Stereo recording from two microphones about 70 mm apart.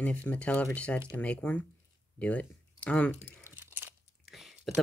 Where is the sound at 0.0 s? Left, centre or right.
Centre.